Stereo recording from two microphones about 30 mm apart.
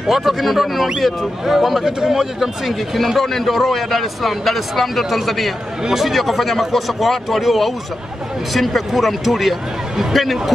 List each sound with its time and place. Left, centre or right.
0.0 s speech: centre
1.9 s a man's voice: right
2.4 s speech: centre